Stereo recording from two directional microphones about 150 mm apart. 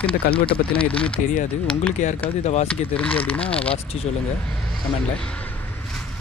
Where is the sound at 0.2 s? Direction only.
90° left.